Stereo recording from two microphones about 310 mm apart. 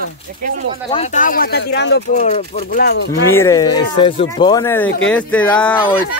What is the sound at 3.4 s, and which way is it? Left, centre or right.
Speech, centre.